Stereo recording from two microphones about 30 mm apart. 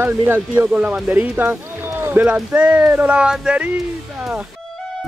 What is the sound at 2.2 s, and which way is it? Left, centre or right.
Speech, right.